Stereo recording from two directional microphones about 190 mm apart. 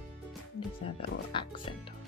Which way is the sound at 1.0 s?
25° left (ahead or behind).